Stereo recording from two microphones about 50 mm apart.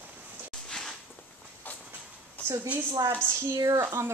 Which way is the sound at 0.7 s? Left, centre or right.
Centre.